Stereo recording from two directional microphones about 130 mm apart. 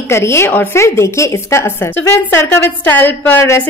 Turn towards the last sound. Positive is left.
turn(degrees=20)  # may be behind; listen again after turning